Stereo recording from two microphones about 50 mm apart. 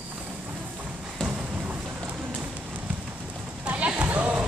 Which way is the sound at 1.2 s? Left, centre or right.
Right.